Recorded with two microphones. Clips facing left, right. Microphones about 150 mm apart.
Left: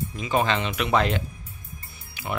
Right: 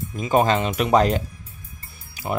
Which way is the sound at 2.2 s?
40° right (ahead or behind).